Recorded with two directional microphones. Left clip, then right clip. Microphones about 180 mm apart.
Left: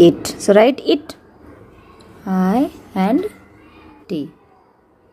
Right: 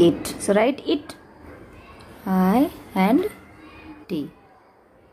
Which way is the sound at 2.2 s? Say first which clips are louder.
Left 2 dB; 10° left (ahead or behind).